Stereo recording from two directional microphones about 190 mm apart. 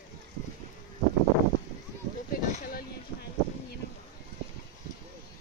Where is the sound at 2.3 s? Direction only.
40° left (ahead or behind).